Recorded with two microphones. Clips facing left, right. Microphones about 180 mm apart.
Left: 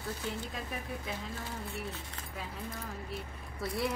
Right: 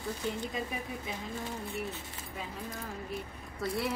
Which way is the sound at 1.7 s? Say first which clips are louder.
Right 3 dB; centre (ahead or behind).